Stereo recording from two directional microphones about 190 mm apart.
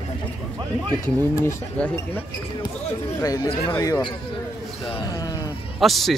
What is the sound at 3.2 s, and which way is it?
Speech, 20° left (ahead or behind).